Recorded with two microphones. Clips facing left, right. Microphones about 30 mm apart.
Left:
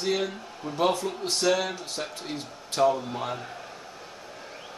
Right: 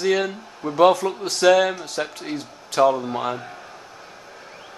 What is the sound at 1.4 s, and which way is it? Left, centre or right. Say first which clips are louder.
Speech: right 11 dB; right.